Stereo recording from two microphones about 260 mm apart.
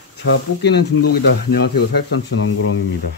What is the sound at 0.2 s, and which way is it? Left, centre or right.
Speech, left.